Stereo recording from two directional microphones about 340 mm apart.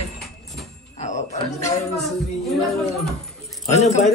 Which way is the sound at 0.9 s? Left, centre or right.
Left.